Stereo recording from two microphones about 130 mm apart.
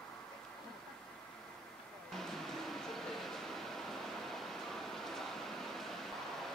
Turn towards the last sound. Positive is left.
turn(degrees=0)  # may be behind; listen again after turning